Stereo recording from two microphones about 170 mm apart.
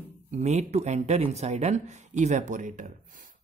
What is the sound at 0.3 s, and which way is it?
Speech, 45° right (ahead or behind).